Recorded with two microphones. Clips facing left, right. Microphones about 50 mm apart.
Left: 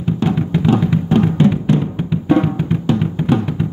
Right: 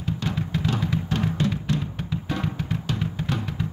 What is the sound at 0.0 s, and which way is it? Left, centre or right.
Music, left.